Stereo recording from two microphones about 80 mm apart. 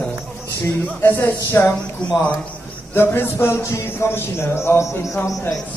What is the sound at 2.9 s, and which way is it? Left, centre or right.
A man's voice, left.